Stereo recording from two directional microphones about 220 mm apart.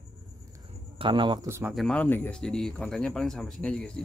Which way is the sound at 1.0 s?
20° right (ahead or behind).